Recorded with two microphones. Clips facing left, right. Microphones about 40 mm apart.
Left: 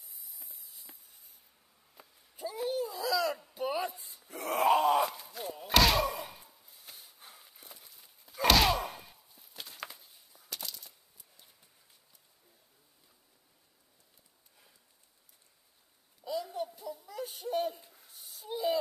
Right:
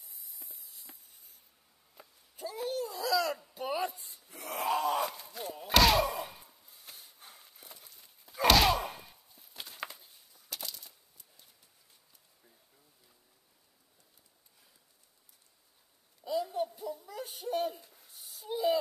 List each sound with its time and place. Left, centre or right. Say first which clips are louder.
0.0 s spray: even; centre
2.0 s a sound: left 1 dB; centre
4.5 s groan: left 6 dB; left
4.8 s slam: left 4 dB; centre
16.3 s babbling: right 3 dB; centre